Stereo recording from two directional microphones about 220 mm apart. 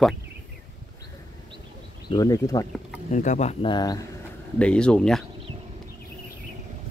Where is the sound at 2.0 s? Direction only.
20° left (ahead or behind).